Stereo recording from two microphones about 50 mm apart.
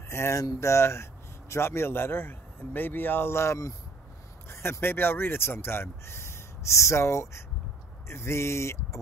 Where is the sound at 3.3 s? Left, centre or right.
Left.